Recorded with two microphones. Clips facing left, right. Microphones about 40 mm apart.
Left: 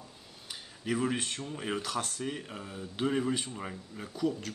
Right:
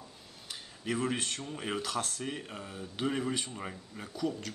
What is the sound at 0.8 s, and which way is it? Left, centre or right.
Speech, centre.